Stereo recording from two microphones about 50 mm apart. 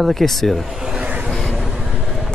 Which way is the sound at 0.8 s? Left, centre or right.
Centre.